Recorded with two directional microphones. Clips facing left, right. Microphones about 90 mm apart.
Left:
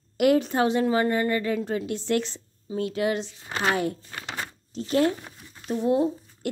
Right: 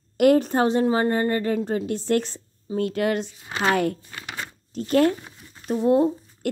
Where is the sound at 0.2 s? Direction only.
45° right (ahead or behind).